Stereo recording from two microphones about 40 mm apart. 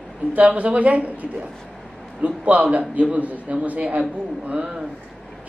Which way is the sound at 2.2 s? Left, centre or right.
Right.